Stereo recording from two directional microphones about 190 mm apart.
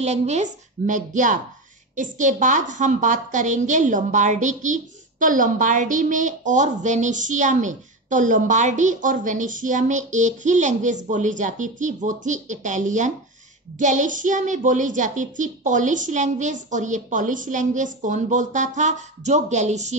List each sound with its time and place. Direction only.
0.0 s a woman's voice: 35° right (ahead or behind)